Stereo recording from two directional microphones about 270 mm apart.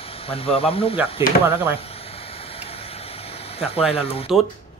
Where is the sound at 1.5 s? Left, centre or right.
Left.